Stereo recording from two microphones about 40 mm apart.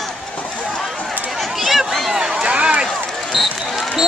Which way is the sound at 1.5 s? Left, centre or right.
Centre.